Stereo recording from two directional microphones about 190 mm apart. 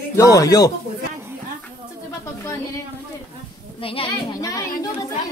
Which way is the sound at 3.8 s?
30° left (ahead or behind).